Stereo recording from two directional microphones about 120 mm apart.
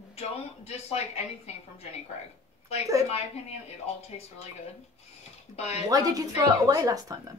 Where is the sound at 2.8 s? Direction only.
25° right (ahead or behind).